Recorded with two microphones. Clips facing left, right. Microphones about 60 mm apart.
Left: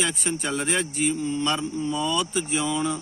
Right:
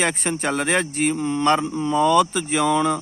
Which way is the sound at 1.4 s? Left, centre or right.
Right.